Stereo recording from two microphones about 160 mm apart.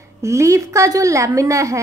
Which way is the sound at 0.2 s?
20° right (ahead or behind).